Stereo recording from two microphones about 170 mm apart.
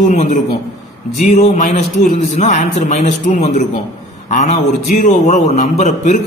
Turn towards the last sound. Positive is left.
turn(degrees=40)  # may be behind; listen again after turning